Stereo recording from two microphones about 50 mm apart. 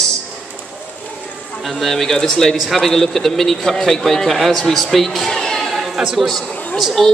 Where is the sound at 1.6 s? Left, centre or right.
Centre.